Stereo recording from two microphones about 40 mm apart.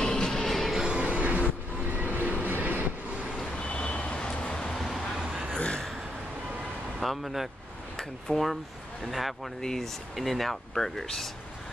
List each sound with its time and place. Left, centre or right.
0.0 s music: centre
0.5 s music: centre
0.8 s music: right
2.4 s train: right
3.3 s vehicle: left
4.7 s vehicle: centre
5.6 s a sound: left
7.0 s speech: centre
9.6 s speech: centre
10.1 s speech: centre